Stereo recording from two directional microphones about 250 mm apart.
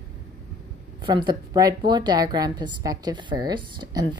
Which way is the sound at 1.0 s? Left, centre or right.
Centre.